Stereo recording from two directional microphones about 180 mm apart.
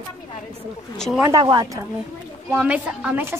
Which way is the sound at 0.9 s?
5° left (ahead or behind).